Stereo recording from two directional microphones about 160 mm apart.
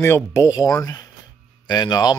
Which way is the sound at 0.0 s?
20° left (ahead or behind).